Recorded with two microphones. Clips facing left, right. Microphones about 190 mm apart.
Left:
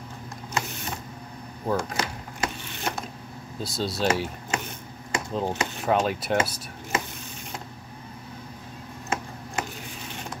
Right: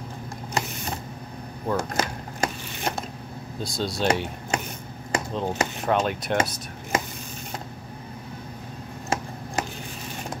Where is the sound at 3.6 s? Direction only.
5° left (ahead or behind).